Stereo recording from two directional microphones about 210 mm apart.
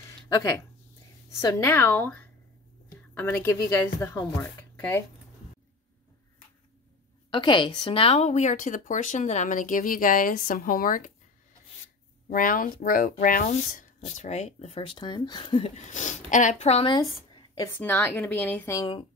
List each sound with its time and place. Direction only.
0.0 s a sound: 15° left (ahead or behind)
1.3 s speech: 15° left (ahead or behind)
7.2 s a woman's voice: 20° left (ahead or behind); by 11.1 s 40° left (ahead or behind)
12.3 s speech: 40° left (ahead or behind); by 17.0 s 25° left (ahead or behind)
17.7 s speech: 10° left (ahead or behind)